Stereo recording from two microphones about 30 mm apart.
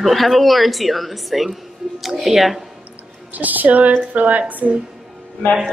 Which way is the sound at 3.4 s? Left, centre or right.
Right.